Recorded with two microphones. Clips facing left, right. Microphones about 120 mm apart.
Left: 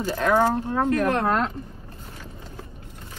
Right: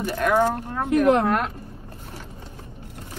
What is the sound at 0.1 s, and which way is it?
Speech, 25° left (ahead or behind).